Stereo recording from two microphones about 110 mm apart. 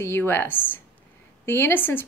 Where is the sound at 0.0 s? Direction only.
20° left (ahead or behind).